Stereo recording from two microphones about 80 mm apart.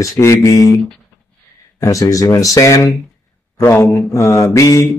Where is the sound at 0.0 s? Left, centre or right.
Left.